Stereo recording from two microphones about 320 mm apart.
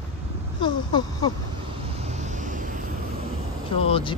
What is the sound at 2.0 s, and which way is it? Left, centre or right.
Vehicle, right.